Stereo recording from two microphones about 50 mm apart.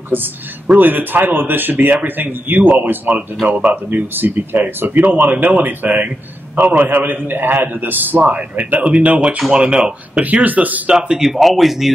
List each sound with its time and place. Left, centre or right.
0.1 s speech: right
10.2 s speech: right
10.9 s speech: centre
11.2 s speech: centre